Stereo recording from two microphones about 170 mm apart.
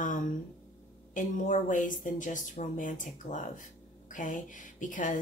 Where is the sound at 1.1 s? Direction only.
50° left (ahead or behind).